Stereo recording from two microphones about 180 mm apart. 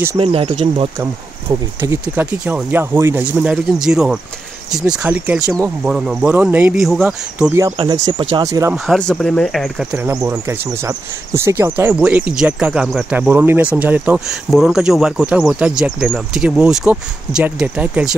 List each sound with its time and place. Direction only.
0.2 s speech: 30° right (ahead or behind)
1.5 s speech: 15° right (ahead or behind)
7.5 s speech: 20° right (ahead or behind)
8.7 s speech: centre (ahead or behind)
9.9 s speech: 15° right (ahead or behind)